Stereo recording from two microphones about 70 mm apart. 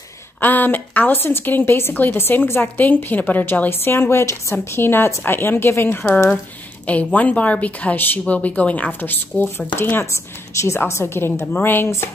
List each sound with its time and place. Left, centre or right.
0.4 s a woman's voice: left
6.9 s a woman's voice: left